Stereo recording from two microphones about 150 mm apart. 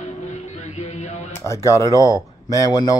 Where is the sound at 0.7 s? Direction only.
50° left (ahead or behind).